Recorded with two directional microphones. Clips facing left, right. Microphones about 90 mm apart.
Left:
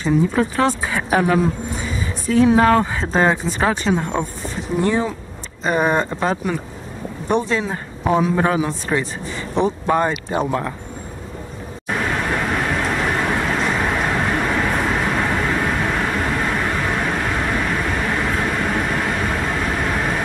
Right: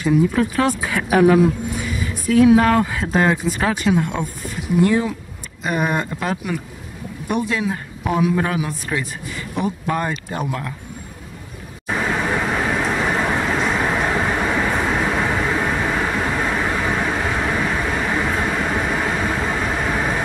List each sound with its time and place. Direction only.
0.0 s speech: 20° left (ahead or behind)
11.9 s vehicle: 5° right (ahead or behind)